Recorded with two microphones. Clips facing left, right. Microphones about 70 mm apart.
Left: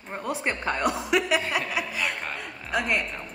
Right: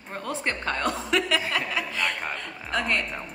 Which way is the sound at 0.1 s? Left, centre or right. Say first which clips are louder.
Left 1 dB; centre.